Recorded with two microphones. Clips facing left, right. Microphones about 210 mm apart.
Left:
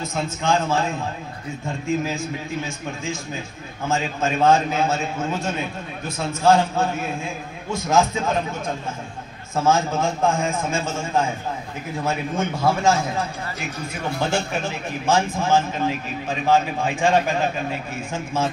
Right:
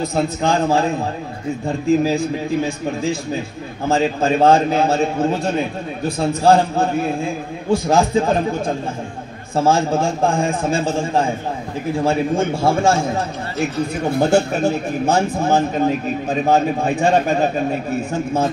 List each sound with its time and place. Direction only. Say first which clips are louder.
0.0 s a man's voice: right 7 dB; 35° right (ahead or behind)
1.9 s a man's voice: right 8 dB; 35° right (ahead or behind)
14.2 s a man's voice: right 8 dB; 40° right (ahead or behind)